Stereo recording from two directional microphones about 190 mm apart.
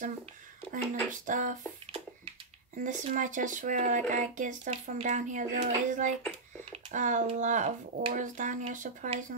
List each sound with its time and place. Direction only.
0.7 s speech: 45° right (ahead or behind)
2.8 s speech: 40° right (ahead or behind)